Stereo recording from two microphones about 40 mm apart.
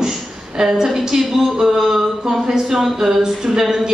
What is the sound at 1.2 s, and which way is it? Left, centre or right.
Speech, centre.